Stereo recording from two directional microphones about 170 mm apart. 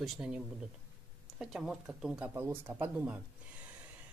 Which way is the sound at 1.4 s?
5° right (ahead or behind).